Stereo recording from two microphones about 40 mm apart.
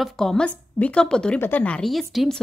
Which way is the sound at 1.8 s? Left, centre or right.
Centre.